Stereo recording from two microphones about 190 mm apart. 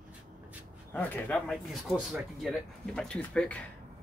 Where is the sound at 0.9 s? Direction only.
10° left (ahead or behind).